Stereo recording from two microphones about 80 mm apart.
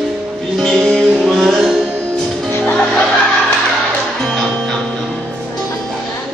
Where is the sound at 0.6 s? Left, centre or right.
Centre.